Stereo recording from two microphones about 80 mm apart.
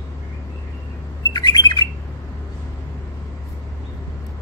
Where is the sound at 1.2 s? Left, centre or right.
Left.